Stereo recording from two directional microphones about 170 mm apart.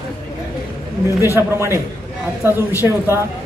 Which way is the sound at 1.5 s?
15° right (ahead or behind).